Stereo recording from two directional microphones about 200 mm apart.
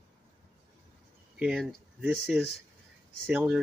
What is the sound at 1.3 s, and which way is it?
Speech, 5° right (ahead or behind).